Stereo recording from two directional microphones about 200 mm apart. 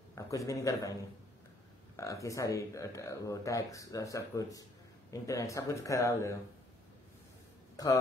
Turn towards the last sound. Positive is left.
turn(degrees=15)  # may be behind; listen again after turning